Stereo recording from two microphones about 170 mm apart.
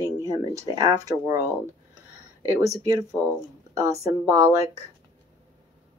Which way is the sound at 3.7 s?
20° right (ahead or behind).